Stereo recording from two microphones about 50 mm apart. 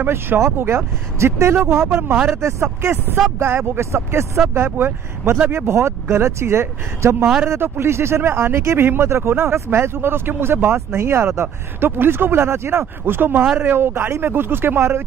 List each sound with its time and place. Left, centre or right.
0.0 s speech: right
0.4 s speech: right
5.7 s speech: right
11.8 s speech: right